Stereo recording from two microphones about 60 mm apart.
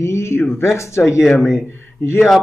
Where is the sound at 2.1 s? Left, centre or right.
Centre.